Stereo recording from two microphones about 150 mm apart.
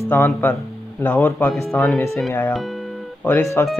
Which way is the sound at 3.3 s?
15° left (ahead or behind).